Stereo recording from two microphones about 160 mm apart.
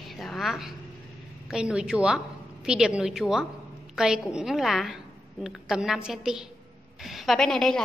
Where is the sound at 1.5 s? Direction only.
5° right (ahead or behind).